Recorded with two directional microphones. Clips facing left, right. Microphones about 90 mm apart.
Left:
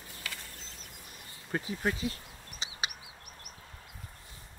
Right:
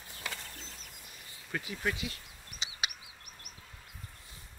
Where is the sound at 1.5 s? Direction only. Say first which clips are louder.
Left 3 dB; 35° left (ahead or behind).